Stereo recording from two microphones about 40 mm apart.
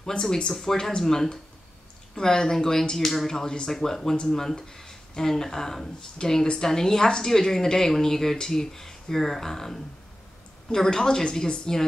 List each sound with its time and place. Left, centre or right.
0.5 s speech: centre